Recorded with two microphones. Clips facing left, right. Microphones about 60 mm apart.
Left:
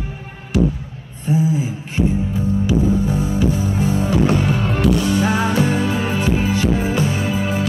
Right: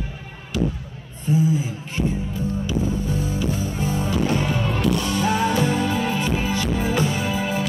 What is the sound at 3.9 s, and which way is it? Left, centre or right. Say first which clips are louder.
Music: left 5 dB; left.